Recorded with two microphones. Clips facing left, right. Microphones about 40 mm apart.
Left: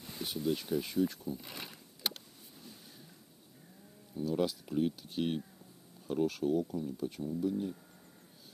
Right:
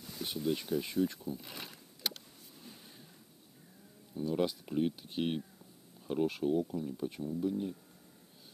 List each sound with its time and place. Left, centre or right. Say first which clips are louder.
0.2 s a sound: even; left
0.6 s speech: even; centre
4.1 s speech: even; centre